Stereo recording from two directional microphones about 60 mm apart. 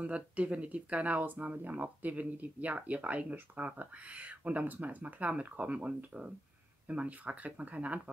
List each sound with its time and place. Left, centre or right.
0.0 s speech: right